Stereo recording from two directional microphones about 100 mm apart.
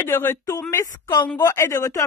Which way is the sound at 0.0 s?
20° left (ahead or behind).